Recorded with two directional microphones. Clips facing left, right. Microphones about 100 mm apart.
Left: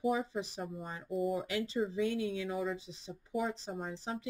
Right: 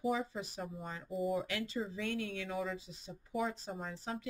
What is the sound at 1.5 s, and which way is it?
Speech, 25° left (ahead or behind).